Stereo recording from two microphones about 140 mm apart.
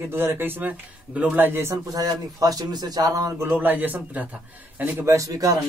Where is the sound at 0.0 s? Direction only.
15° right (ahead or behind).